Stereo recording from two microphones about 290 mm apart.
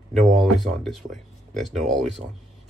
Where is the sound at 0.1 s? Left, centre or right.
Centre.